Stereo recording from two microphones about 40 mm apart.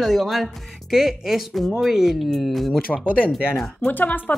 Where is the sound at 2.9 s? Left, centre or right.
Left.